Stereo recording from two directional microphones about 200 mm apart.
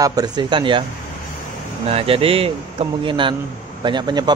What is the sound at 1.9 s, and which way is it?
Speech, 30° right (ahead or behind).